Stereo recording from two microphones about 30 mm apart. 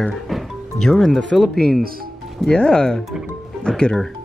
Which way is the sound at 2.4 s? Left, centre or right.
Left.